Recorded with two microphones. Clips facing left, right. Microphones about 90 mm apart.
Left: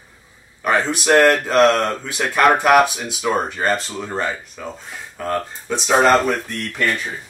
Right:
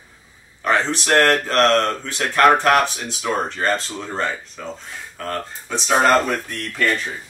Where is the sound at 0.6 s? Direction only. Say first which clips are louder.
Left 2 dB; 10° left (ahead or behind).